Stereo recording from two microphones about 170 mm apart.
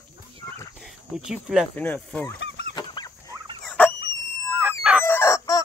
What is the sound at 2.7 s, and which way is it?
Fowl, 25° left (ahead or behind).